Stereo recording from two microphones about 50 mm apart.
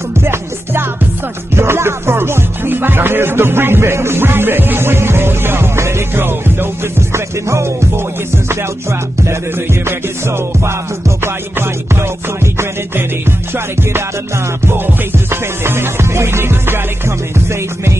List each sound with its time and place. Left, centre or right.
0.2 s music: right
6.1 s music: right
7.4 s music: right
9.8 s music: right
15.6 s music: right